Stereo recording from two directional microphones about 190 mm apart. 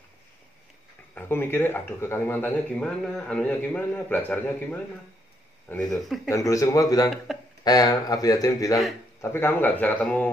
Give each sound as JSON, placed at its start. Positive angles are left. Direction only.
{"t": 1.1, "sound": "speech", "side_deg": 10}
{"t": 6.2, "sound": "speech", "side_deg": 15}
{"t": 7.3, "sound": "a sound", "side_deg": 0}
{"t": 7.6, "sound": "speech", "side_deg": 20}